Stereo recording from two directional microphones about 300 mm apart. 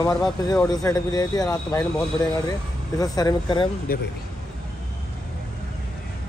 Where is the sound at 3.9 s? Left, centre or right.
Left.